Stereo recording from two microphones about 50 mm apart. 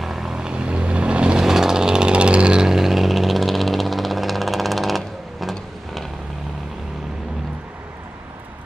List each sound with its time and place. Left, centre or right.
0.0 s vehicle: centre
1.4 s vehicle: centre